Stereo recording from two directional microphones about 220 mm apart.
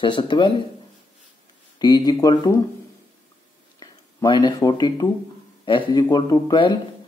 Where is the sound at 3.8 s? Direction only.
20° left (ahead or behind).